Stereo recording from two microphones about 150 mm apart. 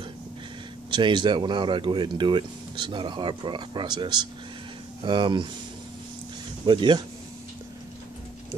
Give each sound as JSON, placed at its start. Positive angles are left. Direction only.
{"t": 0.8, "sound": "speech", "side_deg": -30}
{"t": 6.6, "sound": "speech", "side_deg": -30}